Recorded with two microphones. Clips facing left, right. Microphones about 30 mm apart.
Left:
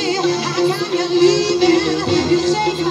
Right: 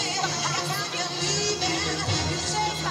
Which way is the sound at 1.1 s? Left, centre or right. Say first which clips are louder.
Left 17 dB; left.